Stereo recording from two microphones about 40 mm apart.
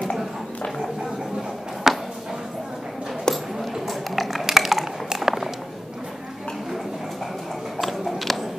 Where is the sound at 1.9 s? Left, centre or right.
Centre.